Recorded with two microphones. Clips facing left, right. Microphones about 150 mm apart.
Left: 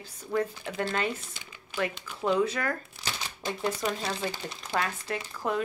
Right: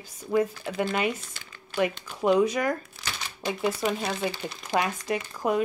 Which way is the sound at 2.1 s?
15° right (ahead or behind).